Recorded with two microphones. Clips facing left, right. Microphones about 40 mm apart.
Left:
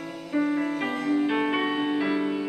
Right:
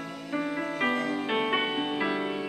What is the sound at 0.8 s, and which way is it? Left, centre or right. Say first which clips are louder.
Music: left 3 dB; centre.